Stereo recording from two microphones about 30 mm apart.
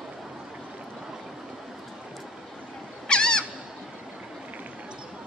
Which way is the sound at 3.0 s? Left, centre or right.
Left.